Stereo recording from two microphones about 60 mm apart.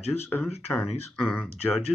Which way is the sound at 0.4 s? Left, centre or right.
Centre.